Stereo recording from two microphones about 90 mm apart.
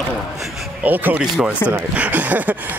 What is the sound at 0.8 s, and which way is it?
A man's voice, 20° right (ahead or behind).